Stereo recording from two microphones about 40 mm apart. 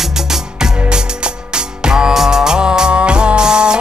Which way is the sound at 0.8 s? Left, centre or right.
Right.